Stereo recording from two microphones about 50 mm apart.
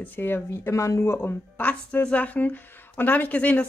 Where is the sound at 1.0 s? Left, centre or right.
Left.